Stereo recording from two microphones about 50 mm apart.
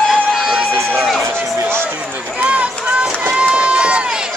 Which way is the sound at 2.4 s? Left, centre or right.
Right.